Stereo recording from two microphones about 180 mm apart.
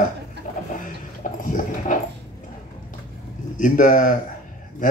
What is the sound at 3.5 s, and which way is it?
Speech, 45° left (ahead or behind).